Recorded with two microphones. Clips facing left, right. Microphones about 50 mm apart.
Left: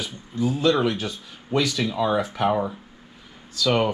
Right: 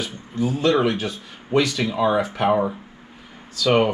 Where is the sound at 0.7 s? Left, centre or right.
Right.